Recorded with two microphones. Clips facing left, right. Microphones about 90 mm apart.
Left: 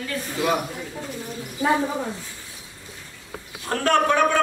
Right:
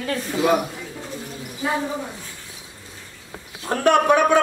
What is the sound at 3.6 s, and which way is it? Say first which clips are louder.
Speech: right 3 dB; 15° right (ahead or behind).